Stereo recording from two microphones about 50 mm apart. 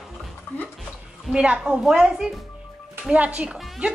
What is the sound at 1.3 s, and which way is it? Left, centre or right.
A woman's voice, right.